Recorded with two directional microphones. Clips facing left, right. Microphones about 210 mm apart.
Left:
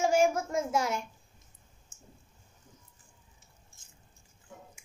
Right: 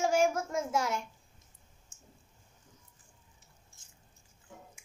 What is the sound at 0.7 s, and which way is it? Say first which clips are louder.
Speech: left 2 dB; 5° left (ahead or behind).